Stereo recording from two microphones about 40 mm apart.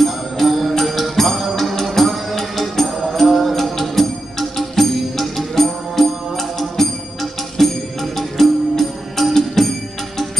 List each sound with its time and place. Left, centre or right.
0.0 s music: centre